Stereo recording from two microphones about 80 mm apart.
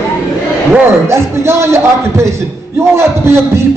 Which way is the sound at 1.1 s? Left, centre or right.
Right.